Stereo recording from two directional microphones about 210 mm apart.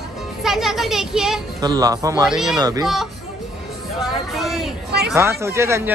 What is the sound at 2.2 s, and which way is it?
Speech, centre (ahead or behind).